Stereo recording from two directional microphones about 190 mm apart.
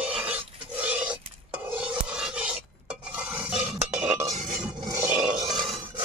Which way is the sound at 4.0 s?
15° right (ahead or behind).